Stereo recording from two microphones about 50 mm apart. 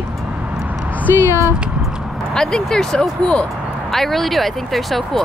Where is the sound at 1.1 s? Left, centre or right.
Right.